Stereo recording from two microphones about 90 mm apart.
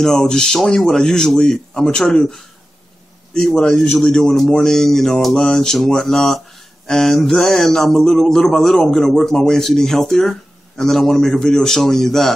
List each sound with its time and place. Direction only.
0.0 s a man's voice: 5° left (ahead or behind)